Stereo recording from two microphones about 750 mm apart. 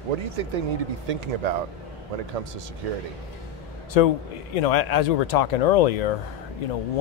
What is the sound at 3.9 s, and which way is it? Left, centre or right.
A man's voice, left.